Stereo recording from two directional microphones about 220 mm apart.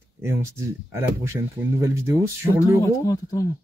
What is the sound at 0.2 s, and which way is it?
Speech, 15° right (ahead or behind).